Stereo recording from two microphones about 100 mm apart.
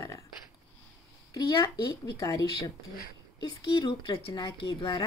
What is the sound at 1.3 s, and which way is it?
Speech, 35° left (ahead or behind).